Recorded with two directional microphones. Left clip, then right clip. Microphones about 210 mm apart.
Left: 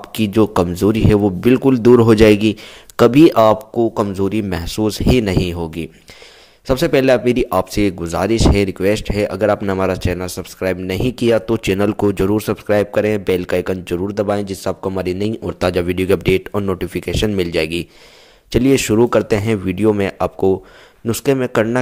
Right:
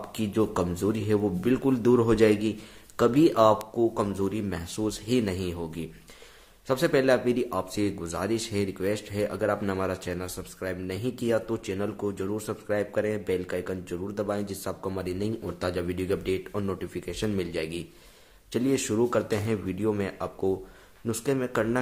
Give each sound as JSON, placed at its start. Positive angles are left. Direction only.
{"t": 0.1, "sound": "speech", "side_deg": 40}